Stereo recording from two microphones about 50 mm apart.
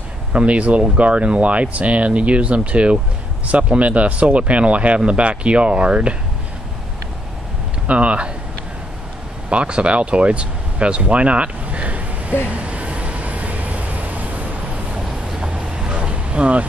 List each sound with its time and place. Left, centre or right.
0.3 s speech: right
7.8 s speech: right
9.5 s speech: right
12.4 s vehicle: right
15.0 s vehicle: centre